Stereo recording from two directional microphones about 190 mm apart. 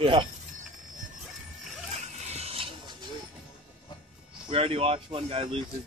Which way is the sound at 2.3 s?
30° right (ahead or behind).